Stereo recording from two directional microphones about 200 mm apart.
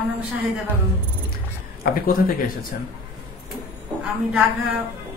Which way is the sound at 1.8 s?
45° left (ahead or behind).